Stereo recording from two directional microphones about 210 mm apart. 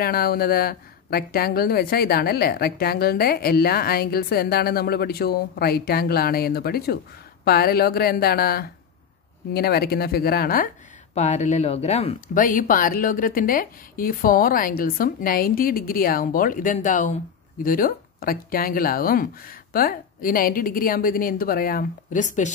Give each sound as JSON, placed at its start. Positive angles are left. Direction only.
{"t": 0.0, "sound": "speech", "side_deg": 45}